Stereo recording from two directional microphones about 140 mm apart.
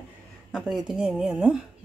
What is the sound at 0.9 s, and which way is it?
Speech, 5° right (ahead or behind).